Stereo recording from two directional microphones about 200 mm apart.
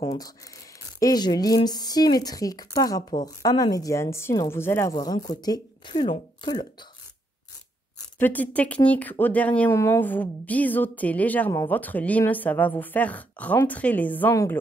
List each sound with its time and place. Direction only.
0.0 s a woman's voice: 25° left (ahead or behind)
8.2 s a woman's voice: 10° left (ahead or behind)